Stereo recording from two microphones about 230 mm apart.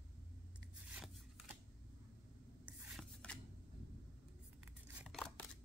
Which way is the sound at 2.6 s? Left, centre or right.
Centre.